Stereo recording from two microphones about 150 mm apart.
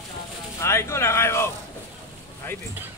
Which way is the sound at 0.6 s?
15° left (ahead or behind).